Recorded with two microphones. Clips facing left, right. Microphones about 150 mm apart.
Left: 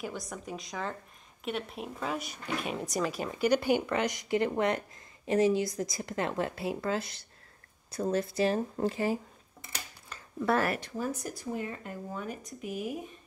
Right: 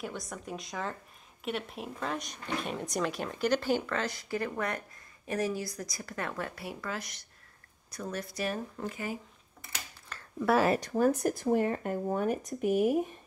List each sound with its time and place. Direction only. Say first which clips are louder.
0.0 s a woman's voice: left 1 dB; centre (ahead or behind); by 9.2 s 35° left (ahead or behind)
10.8 s speech: right 8 dB; 55° right (ahead or behind)